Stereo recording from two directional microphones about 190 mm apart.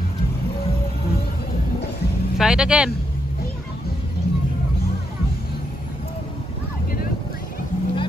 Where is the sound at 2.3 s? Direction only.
5° right (ahead or behind).